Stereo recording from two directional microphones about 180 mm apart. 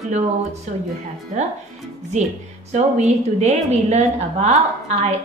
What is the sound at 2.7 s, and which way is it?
A woman's voice, 40° right (ahead or behind).